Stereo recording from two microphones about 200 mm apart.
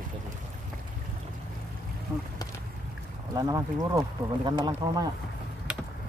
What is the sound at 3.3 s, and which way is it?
Speech, 15° right (ahead or behind).